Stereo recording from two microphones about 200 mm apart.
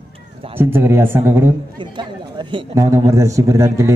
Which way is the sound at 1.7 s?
25° right (ahead or behind).